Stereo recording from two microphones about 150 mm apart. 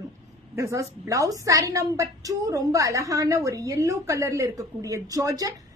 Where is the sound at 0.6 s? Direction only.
20° right (ahead or behind).